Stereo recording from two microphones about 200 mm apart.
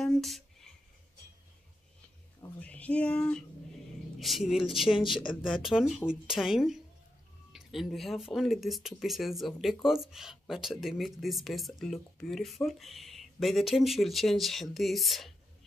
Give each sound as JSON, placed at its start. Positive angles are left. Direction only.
{"t": 0.0, "sound": "a sound", "side_deg": 0}
{"t": 2.6, "sound": "speech", "side_deg": 5}
{"t": 5.0, "sound": "speech", "side_deg": 25}
{"t": 5.3, "sound": "speech", "side_deg": 0}